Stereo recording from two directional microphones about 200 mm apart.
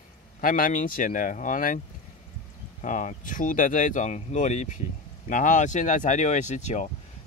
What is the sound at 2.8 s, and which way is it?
Speech, 40° left (ahead or behind).